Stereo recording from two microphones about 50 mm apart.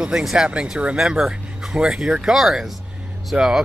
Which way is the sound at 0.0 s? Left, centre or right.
Centre.